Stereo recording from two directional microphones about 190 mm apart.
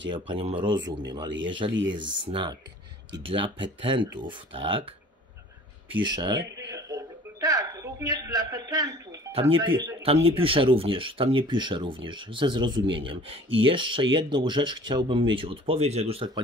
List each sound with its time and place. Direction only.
0.1 s speech: 25° right (ahead or behind)
0.7 s speech: 70° right (ahead or behind)
2.2 s speech: 25° right (ahead or behind)
5.9 s speech: 25° right (ahead or behind)
6.7 s a sound: 15° right (ahead or behind)
9.3 s speech: 30° right (ahead or behind)